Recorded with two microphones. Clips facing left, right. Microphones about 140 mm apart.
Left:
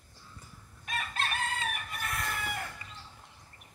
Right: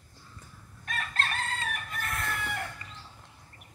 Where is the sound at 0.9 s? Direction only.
10° left (ahead or behind).